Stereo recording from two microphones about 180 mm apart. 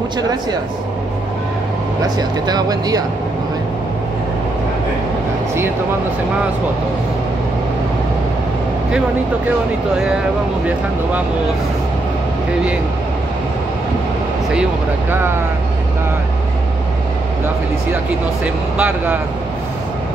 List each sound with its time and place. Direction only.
2.1 s speech: 20° right (ahead or behind)
14.5 s speech: 10° right (ahead or behind)
18.4 s speech: 10° right (ahead or behind)